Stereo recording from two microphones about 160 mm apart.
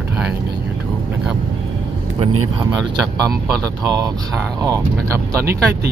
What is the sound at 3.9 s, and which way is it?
Speech, 20° right (ahead or behind).